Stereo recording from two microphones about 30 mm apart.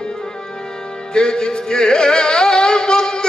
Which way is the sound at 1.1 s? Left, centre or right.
Left.